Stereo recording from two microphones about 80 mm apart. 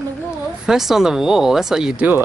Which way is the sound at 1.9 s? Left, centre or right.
Right.